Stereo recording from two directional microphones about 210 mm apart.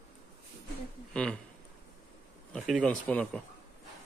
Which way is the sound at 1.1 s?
5° left (ahead or behind).